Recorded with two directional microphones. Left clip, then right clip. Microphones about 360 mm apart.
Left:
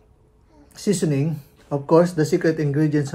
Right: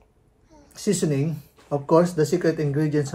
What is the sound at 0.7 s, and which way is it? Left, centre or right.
Speech, centre.